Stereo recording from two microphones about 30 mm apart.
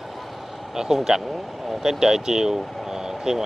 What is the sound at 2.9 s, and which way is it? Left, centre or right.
Vehicle, centre.